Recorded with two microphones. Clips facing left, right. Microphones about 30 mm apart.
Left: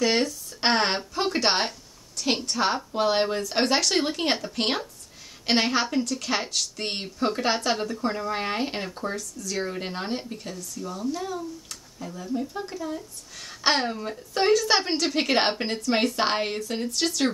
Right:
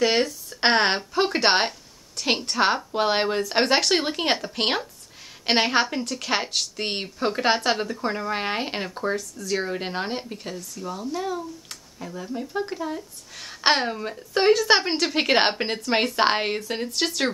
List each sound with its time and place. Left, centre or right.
0.0 s a woman's voice: right